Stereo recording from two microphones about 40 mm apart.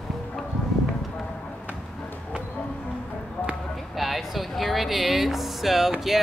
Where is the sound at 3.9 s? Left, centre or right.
Centre.